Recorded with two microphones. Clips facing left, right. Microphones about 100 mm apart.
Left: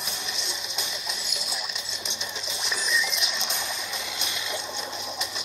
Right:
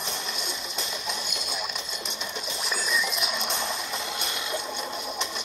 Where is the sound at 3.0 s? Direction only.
45° right (ahead or behind).